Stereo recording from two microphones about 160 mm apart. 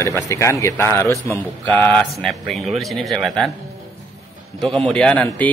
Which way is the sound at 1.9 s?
Centre (ahead or behind).